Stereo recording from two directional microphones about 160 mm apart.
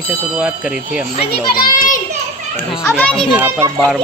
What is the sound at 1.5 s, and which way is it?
Speech, 60° left (ahead or behind).